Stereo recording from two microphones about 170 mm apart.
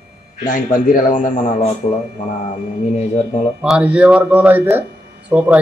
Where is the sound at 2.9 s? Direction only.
40° left (ahead or behind).